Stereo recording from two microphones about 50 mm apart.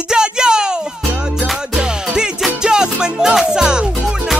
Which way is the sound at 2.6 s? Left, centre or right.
Centre.